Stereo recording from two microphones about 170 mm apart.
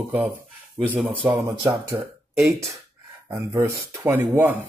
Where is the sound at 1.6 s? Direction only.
20° right (ahead or behind).